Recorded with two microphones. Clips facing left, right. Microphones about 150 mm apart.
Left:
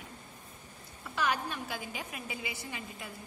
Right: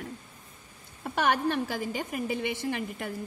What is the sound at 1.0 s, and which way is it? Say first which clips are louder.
A woman's voice: right 7 dB; 75° right (ahead or behind).